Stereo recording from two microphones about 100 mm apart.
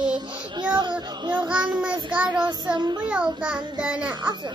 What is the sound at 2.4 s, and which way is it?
Speech, 45° right (ahead or behind).